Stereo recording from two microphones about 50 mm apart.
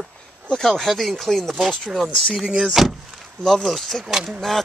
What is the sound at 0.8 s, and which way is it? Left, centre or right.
Speech, centre.